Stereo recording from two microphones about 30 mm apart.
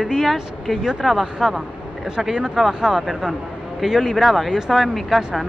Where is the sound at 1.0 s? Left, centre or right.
Centre.